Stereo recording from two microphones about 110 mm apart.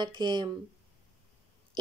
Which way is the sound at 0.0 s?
45° right (ahead or behind).